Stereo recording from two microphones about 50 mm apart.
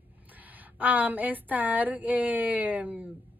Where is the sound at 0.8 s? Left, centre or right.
Right.